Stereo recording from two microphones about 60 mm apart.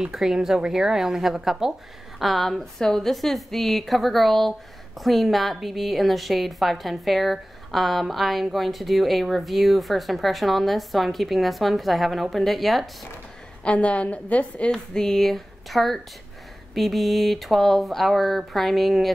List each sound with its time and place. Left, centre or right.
0.0 s a woman's voice: centre
13.7 s a woman's voice: left
14.7 s a woman's voice: centre